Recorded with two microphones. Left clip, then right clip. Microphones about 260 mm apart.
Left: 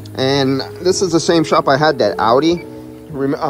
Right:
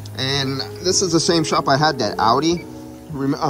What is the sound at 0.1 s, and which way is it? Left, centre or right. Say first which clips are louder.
A man's voice: left 7 dB; centre.